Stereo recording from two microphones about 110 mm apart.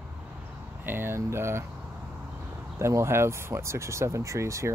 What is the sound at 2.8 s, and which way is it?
Speech, 25° right (ahead or behind).